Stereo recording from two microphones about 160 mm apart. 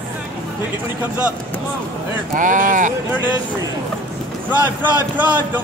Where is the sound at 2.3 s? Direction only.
55° right (ahead or behind).